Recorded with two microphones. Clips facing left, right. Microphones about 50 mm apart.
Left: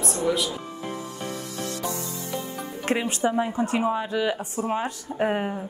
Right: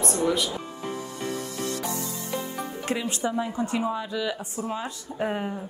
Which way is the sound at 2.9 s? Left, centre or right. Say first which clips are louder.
Left 5 dB; left.